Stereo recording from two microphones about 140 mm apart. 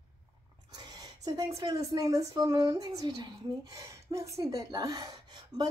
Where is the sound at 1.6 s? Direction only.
25° right (ahead or behind).